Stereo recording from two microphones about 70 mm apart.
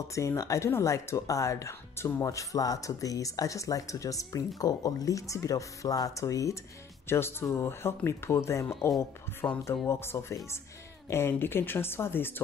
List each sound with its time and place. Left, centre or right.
0.1 s speech: left
4.6 s speech: left
7.1 s speech: left